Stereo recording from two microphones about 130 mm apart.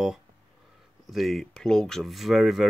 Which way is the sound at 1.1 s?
Centre (ahead or behind).